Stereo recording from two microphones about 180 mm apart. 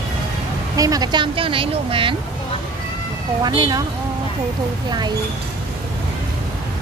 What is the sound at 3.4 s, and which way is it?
Speech, 25° right (ahead or behind).